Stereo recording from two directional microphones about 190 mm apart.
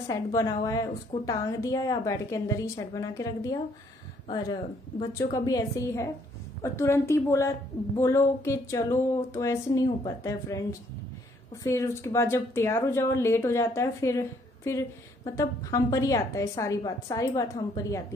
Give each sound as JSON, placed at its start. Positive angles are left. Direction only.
{"t": 0.1, "sound": "a woman's voice", "side_deg": 20}